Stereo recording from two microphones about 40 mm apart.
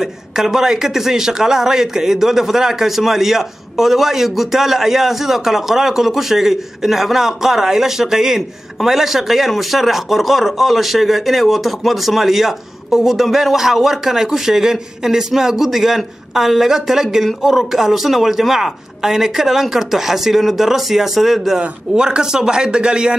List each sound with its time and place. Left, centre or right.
0.0 s a man's voice: centre
21.5 s speech: right